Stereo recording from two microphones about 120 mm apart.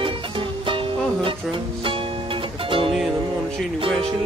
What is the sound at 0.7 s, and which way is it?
Music, 45° right (ahead or behind).